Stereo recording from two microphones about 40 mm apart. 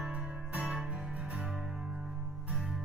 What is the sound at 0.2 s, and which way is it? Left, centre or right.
Music, centre.